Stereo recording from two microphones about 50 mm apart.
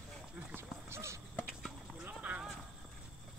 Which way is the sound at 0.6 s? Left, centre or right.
Right.